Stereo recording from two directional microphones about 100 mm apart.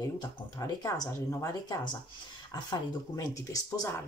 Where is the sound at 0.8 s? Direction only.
35° left (ahead or behind).